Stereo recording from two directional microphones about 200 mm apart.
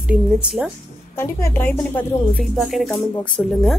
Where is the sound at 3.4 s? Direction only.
10° left (ahead or behind).